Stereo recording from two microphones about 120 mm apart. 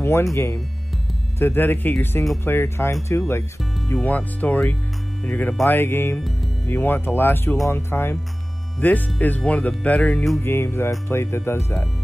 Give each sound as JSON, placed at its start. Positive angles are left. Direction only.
{"t": 0.0, "sound": "speech", "side_deg": 25}